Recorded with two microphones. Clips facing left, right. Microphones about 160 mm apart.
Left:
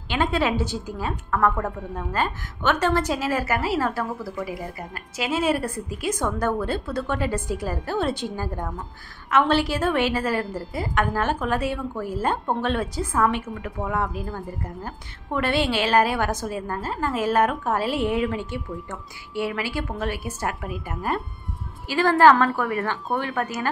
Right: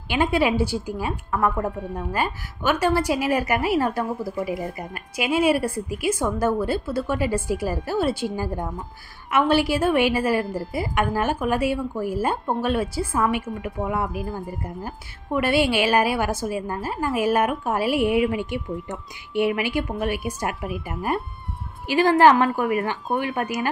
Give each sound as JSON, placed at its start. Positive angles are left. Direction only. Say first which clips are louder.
{"t": 0.1, "sound": "a woman's voice", "louder": "right 2 dB", "side_deg": -10}